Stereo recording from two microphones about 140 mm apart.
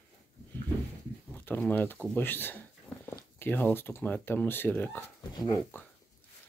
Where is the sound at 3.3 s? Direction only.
15° left (ahead or behind).